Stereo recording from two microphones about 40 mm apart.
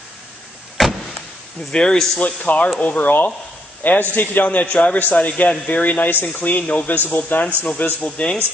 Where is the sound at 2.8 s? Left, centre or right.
Left.